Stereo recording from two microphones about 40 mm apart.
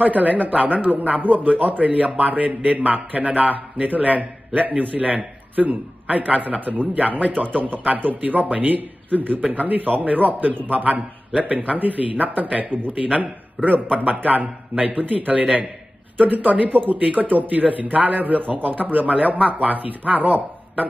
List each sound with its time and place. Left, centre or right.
0.0 s a man's voice: right
12.7 s speech: left
13.2 s a man's voice: right